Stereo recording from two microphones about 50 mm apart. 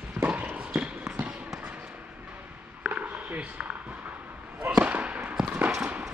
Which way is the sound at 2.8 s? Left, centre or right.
Right.